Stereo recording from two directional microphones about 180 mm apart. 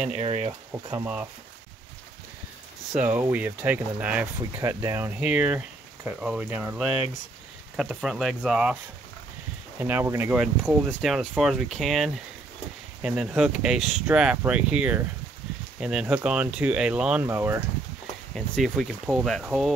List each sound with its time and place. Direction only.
0.2 s speech: 35° right (ahead or behind)
0.5 s speech: 15° right (ahead or behind)
2.9 s speech: 10° right (ahead or behind)
9.8 s speech: 10° right (ahead or behind)
18.3 s speech: centre (ahead or behind)